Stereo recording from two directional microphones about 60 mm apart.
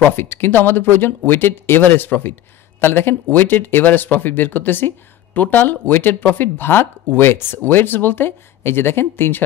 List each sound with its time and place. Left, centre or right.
0.0 s speech: left